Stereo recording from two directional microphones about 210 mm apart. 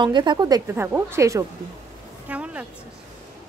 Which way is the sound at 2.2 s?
5° right (ahead or behind).